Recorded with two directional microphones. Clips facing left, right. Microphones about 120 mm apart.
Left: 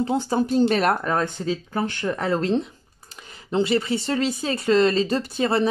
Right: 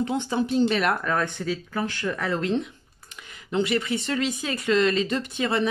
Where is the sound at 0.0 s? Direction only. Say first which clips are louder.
Left 3 dB; 35° left (ahead or behind).